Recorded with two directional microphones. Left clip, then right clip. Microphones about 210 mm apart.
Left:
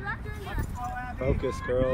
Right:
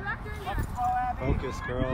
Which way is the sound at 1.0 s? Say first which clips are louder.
Even; 40° right (ahead or behind).